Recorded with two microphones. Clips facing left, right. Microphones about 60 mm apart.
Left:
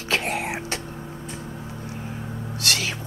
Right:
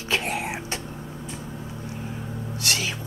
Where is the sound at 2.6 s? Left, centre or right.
Left.